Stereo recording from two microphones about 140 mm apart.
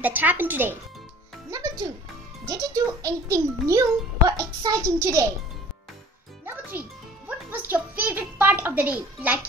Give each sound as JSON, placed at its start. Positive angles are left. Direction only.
{"t": 0.0, "sound": "a child's voice", "side_deg": -10}
{"t": 1.5, "sound": "music", "side_deg": -25}
{"t": 2.4, "sound": "a child's voice", "side_deg": -25}
{"t": 6.4, "sound": "music", "side_deg": -15}
{"t": 7.2, "sound": "a child's voice", "side_deg": -15}